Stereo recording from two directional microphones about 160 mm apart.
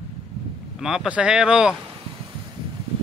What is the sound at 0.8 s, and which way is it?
Speech, 5° right (ahead or behind).